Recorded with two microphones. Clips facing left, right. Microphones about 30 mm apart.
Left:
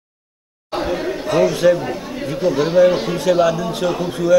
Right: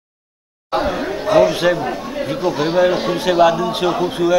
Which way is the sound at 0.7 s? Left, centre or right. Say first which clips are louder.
Right 2 dB; centre.